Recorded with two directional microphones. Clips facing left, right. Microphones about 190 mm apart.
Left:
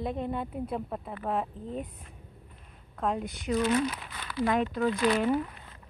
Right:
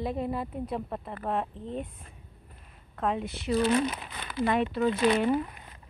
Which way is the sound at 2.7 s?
Centre (ahead or behind).